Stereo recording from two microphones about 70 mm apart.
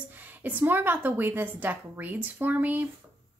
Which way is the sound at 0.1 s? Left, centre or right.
Right.